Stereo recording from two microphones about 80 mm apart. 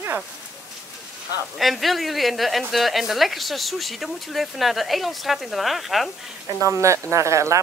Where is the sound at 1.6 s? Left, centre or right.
Centre.